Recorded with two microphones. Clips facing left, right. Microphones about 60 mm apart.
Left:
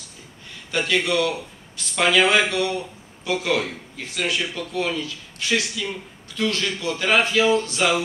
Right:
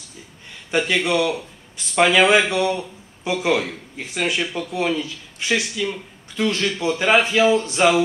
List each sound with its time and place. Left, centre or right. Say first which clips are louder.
0.7 s a man's voice: right 2 dB; right